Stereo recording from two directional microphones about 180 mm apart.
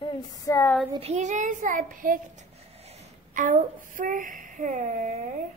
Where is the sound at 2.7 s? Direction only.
35° right (ahead or behind).